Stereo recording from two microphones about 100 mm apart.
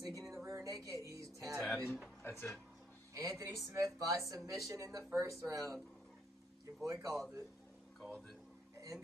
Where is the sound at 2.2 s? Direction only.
25° left (ahead or behind).